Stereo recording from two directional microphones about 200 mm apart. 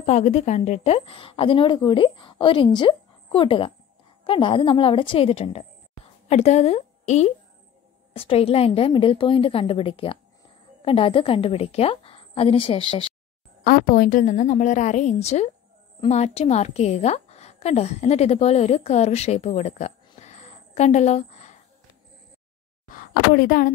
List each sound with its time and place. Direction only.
0.0 s a woman's voice: 35° left (ahead or behind)
13.7 s a woman's voice: 45° left (ahead or behind)
22.8 s speech: 45° left (ahead or behind)